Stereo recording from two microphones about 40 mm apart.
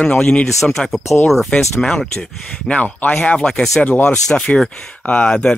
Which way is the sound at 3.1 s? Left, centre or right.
Left.